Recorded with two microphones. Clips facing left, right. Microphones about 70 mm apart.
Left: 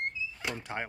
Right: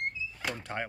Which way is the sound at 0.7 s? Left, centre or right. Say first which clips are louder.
Right 1 dB; centre.